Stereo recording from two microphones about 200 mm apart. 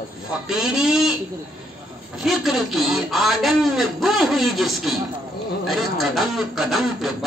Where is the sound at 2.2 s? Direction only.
Centre (ahead or behind).